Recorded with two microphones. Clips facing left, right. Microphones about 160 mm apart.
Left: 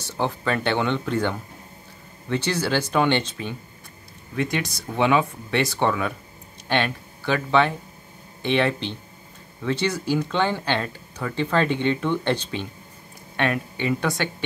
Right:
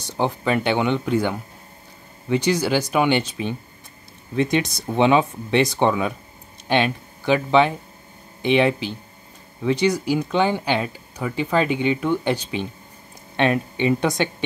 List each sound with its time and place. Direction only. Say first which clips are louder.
0.0 s speech: right 3 dB; 15° right (ahead or behind)
4.4 s speech: right 5 dB; 20° right (ahead or behind)